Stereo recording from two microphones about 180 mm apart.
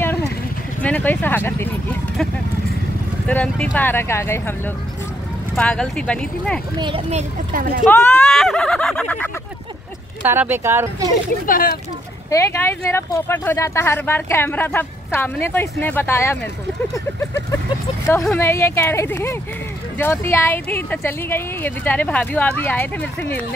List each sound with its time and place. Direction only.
0.8 s speech: 10° left (ahead or behind)
3.3 s speech: 10° left (ahead or behind)
5.6 s speech: 5° left (ahead or behind)
6.8 s a child's voice: 30° right (ahead or behind)
7.9 s speech: 5° left (ahead or behind)
10.2 s speech: 10° right (ahead or behind)
11.4 s speech: 50° left (ahead or behind)
12.3 s speech: 15° left (ahead or behind)
18.2 s speech: 10° left (ahead or behind)